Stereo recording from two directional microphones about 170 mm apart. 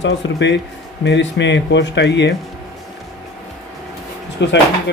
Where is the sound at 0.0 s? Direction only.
90° left.